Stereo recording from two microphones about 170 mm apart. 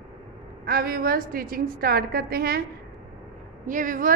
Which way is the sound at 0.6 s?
60° right (ahead or behind).